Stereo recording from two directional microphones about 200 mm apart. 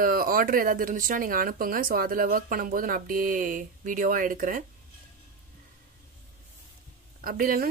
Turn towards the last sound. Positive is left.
turn(degrees=-45)  # may be behind; listen again after turning